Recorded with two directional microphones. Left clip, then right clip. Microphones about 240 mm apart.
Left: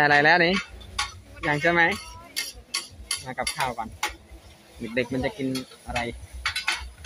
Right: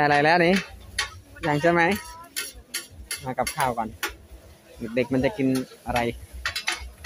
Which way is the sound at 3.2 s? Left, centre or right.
Centre.